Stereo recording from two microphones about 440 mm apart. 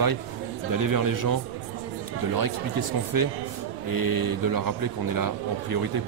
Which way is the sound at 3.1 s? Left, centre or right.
Right.